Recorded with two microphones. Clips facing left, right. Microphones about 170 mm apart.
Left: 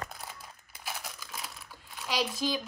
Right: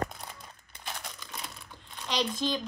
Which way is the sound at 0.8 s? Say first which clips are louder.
Even; 5° left (ahead or behind).